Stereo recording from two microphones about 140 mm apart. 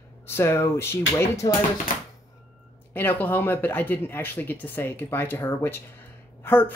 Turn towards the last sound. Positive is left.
turn(degrees=15)  # may be behind; listen again after turning